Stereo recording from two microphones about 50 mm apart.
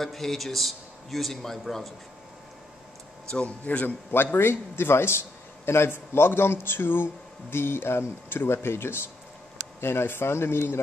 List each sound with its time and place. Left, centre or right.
0.0 s a man's voice: centre
3.4 s a man's voice: left
3.8 s speech: left